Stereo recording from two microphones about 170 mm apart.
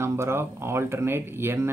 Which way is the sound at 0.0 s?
15° right (ahead or behind).